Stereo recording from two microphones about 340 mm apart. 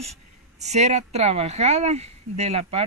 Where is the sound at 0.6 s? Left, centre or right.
Centre.